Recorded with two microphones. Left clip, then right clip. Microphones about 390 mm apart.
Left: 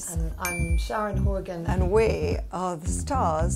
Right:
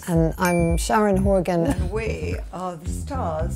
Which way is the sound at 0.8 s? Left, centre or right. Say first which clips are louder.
Right 8 dB; right.